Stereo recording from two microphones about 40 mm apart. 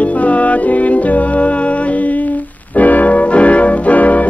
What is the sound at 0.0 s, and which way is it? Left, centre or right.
Music, left.